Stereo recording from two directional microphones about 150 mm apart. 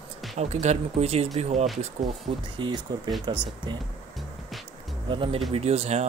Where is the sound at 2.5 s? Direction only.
30° right (ahead or behind).